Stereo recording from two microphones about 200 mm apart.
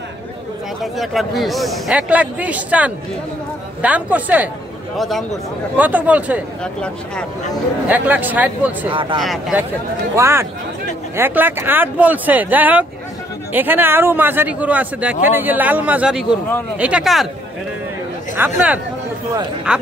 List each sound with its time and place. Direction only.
0.9 s a man's voice: centre (ahead or behind)
6.6 s a man's voice: 5° left (ahead or behind)
7.9 s a man's voice: 10° right (ahead or behind)
10.1 s a man's voice: 15° right (ahead or behind)
18.3 s a man's voice: 10° right (ahead or behind)